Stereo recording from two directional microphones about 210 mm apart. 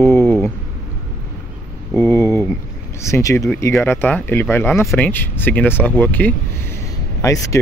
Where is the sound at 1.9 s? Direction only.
10° left (ahead or behind).